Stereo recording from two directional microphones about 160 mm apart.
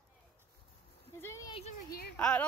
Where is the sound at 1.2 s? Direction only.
15° left (ahead or behind).